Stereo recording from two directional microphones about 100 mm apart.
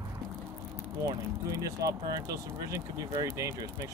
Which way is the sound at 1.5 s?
35° right (ahead or behind).